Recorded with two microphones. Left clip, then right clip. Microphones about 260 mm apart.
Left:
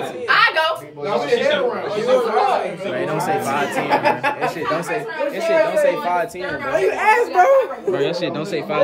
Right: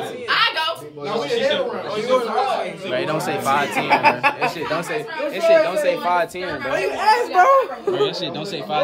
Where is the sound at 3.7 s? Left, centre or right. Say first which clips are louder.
Even; right.